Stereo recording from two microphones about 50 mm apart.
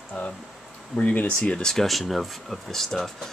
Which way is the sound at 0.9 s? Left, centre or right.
Left.